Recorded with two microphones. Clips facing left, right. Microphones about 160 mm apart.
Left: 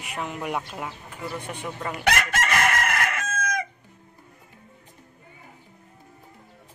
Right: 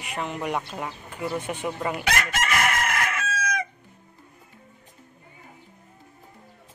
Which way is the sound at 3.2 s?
50° left (ahead or behind).